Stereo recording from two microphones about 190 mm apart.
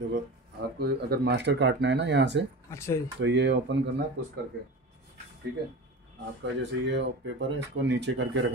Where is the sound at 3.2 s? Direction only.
70° right (ahead or behind).